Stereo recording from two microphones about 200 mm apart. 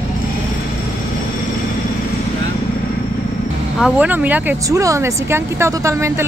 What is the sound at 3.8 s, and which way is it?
Speech, 5° right (ahead or behind).